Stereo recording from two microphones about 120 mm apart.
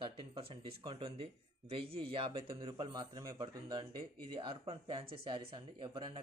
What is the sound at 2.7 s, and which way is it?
Speech, 35° right (ahead or behind).